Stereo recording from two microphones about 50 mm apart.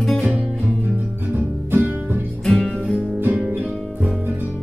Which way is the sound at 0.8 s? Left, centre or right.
Right.